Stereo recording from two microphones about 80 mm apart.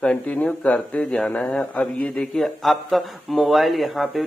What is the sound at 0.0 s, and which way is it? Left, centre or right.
A man's voice, centre.